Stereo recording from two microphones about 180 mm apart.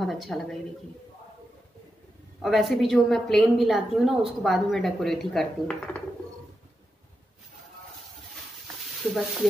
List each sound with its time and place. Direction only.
0.0 s a woman's voice: centre (ahead or behind)
2.4 s a woman's voice: centre (ahead or behind)
8.6 s a sound: centre (ahead or behind)